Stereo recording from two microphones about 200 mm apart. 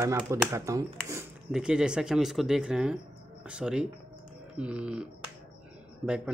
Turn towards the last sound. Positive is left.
turn(degrees=-5)  # may be behind; listen again after turning